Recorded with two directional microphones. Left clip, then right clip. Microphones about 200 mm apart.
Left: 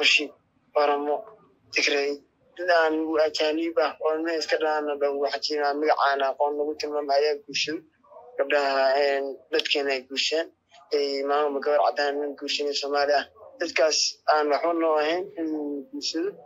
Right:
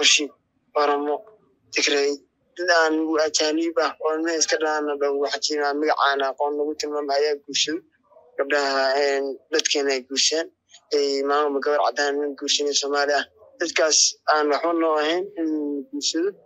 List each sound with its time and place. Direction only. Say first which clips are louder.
0.0 s speech: right 2 dB; 45° right (ahead or behind)